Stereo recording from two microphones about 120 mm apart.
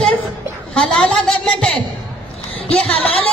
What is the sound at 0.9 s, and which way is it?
Music, 10° left (ahead or behind).